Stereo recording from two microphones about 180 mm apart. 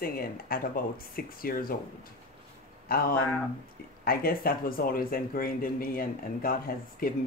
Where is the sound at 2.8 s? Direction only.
55° left (ahead or behind).